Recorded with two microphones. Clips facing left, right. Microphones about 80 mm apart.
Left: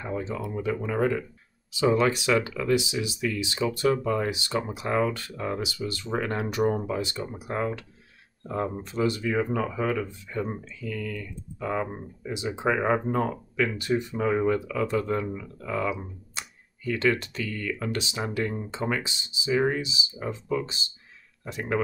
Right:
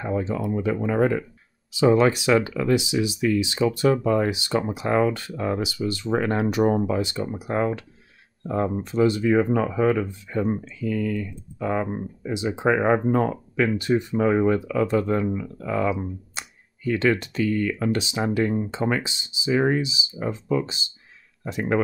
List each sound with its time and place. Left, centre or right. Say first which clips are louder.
0.0 s speech: right 6 dB; right